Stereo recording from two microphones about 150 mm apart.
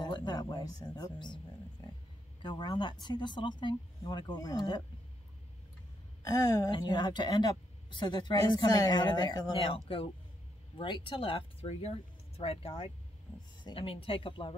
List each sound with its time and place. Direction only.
0.0 s speech: 30° left (ahead or behind)
2.4 s speech: 30° left (ahead or behind)
6.2 s speech: 25° left (ahead or behind)
10.8 s speech: 35° left (ahead or behind)